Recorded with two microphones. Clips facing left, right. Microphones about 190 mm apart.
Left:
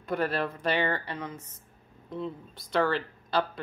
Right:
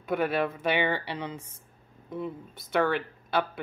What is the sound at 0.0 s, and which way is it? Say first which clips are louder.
Speech: right 2 dB; 5° right (ahead or behind).